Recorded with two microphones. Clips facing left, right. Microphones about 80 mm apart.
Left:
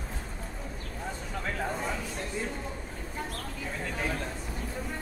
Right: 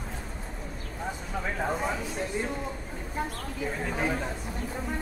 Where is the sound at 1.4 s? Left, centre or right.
Centre.